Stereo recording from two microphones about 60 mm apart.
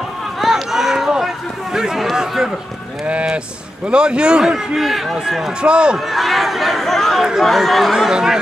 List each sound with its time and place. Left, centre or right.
0.4 s run: centre
3.1 s speech: centre
4.7 s speech: centre
5.6 s speech: centre
5.9 s chatter: centre
7.4 s speech: centre